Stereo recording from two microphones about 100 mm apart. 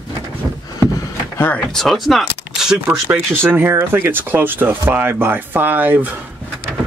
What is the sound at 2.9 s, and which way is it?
Speech, 25° right (ahead or behind).